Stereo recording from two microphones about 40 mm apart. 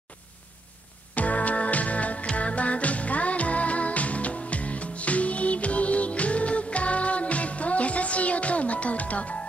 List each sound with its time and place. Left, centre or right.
1.1 s music: left